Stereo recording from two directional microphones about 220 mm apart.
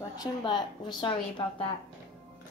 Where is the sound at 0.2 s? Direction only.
20° left (ahead or behind).